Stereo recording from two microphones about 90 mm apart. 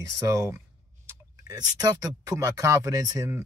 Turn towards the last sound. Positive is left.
turn(degrees=-40)  # may be behind; listen again after turning